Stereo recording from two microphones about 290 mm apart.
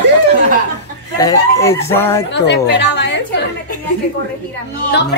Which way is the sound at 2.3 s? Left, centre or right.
Left.